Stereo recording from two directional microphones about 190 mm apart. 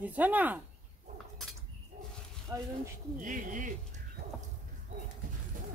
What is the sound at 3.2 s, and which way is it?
Speech, 45° right (ahead or behind).